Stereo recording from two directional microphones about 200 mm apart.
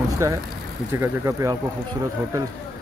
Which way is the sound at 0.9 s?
15° right (ahead or behind).